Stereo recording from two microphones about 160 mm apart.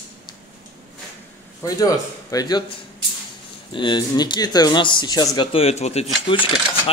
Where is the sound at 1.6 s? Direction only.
20° left (ahead or behind).